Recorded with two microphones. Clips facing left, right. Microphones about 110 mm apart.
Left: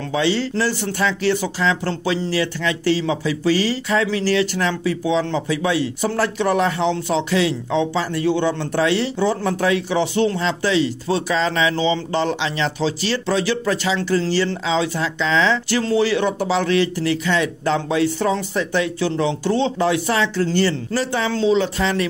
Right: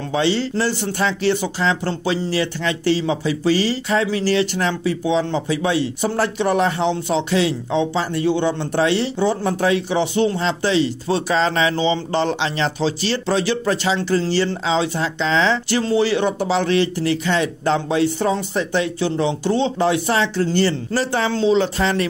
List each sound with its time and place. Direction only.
0.1 s speech: 30° right (ahead or behind)